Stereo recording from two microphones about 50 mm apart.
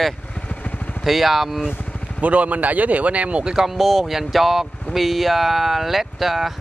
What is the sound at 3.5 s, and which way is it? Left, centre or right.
Speech, centre.